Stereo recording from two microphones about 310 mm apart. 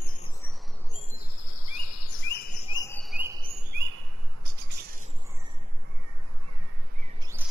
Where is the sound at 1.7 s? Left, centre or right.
Left.